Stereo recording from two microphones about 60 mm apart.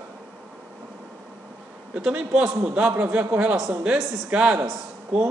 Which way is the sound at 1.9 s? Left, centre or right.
Right.